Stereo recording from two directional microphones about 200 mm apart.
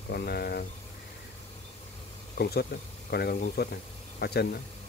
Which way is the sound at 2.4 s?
50° left (ahead or behind).